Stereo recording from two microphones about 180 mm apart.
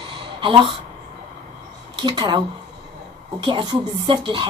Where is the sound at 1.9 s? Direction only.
25° right (ahead or behind).